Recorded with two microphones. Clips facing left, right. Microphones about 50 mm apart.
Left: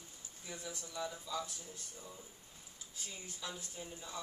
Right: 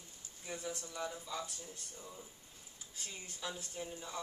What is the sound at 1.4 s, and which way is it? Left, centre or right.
Speech, right.